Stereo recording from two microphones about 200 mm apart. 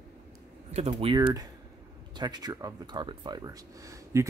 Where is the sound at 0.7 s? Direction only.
30° right (ahead or behind).